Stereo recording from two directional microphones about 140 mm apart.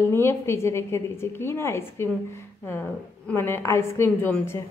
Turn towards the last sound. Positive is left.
turn(degrees=15)  # may be behind; listen again after turning